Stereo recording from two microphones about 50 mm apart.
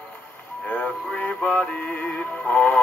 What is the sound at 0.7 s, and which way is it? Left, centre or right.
Music, left.